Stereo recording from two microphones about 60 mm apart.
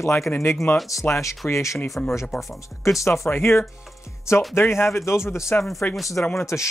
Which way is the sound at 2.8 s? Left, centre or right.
Left.